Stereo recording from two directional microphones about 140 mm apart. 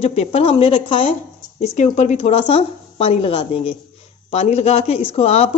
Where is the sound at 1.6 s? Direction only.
55° left (ahead or behind).